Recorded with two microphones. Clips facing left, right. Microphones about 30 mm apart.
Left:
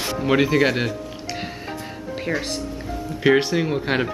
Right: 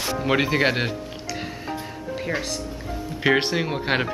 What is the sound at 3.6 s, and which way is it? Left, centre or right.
Speech, centre.